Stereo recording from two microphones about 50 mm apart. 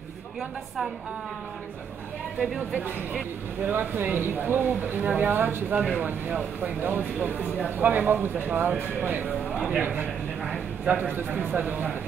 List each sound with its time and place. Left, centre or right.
2.3 s speech: centre
2.7 s speech: right